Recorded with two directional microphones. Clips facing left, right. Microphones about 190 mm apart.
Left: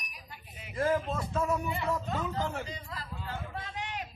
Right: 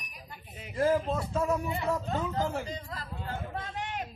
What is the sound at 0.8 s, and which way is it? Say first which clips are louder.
A man's voice: right 3 dB; 25° right (ahead or behind).